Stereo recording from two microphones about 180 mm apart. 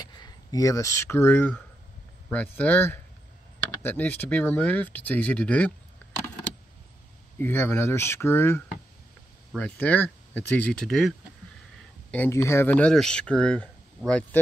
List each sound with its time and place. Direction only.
0.0 s speech: 20° left (ahead or behind)
7.3 s speech: 10° left (ahead or behind)
12.1 s speech: 10° left (ahead or behind)